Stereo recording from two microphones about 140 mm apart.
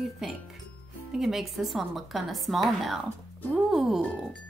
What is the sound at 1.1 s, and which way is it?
A woman's voice, centre (ahead or behind).